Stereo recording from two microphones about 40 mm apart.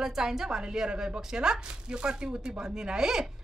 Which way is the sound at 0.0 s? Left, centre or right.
Centre.